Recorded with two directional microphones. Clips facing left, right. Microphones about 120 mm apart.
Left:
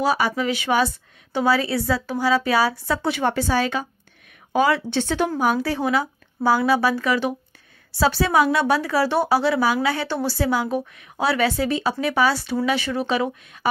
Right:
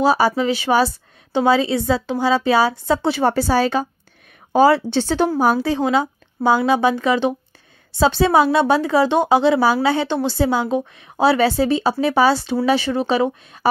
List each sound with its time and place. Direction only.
0.0 s a woman's voice: 30° right (ahead or behind)
1.4 s a woman's voice: 25° right (ahead or behind)
5.7 s a woman's voice: 25° right (ahead or behind)